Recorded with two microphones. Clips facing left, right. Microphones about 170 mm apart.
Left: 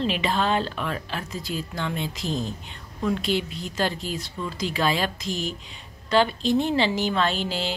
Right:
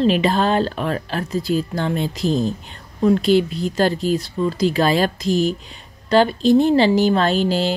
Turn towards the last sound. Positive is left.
turn(degrees=-40)  # may be behind; listen again after turning